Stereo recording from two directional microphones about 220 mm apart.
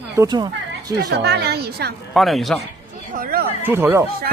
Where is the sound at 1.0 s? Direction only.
50° right (ahead or behind).